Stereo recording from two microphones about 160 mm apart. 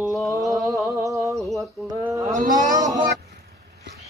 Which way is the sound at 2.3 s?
55° right (ahead or behind).